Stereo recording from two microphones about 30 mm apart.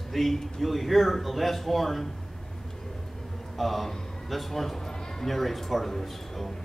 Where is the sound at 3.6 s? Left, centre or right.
Centre.